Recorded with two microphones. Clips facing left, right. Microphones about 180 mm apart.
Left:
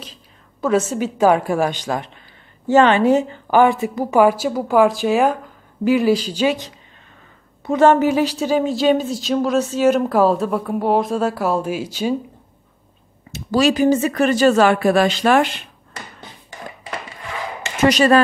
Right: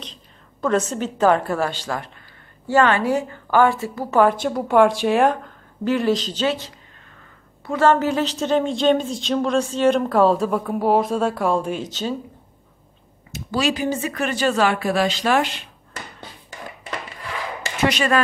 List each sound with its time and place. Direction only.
0.0 s a woman's voice: 5° left (ahead or behind)
13.5 s speech: 40° left (ahead or behind)
17.7 s speech: 40° left (ahead or behind)